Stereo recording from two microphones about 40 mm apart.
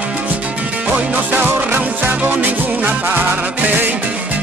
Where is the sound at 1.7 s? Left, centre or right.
Right.